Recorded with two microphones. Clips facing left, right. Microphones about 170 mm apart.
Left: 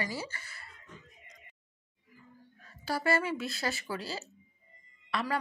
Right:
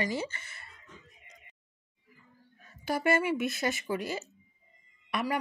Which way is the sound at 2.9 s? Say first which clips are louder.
Right 3 dB; 20° right (ahead or behind).